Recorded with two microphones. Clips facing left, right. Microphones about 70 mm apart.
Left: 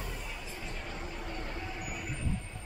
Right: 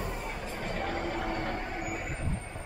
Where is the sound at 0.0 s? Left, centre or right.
Right.